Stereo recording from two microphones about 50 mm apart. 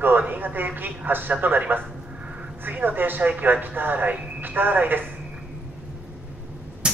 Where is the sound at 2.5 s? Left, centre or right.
Right.